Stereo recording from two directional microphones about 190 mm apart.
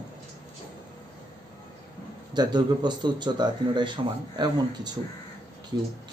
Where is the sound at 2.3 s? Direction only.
20° right (ahead or behind).